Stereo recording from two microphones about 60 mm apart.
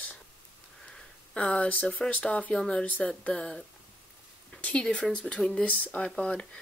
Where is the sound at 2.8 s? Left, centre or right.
Left.